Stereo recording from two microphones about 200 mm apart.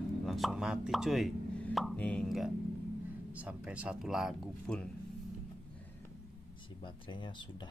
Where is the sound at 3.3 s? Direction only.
5° right (ahead or behind).